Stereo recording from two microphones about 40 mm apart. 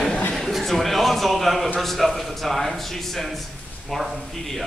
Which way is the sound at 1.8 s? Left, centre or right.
Centre.